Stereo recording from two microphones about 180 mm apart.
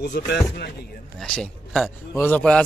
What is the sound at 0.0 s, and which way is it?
Speech, 70° left (ahead or behind).